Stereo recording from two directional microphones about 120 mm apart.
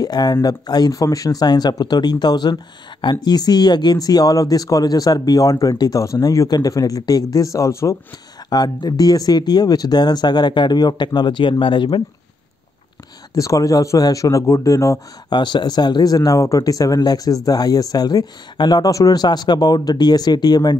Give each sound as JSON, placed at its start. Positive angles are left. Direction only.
{"t": 0.0, "sound": "speech", "side_deg": 35}
{"t": 8.5, "sound": "speech", "side_deg": 35}
{"t": 13.3, "sound": "speech", "side_deg": 30}
{"t": 15.2, "sound": "speech", "side_deg": 40}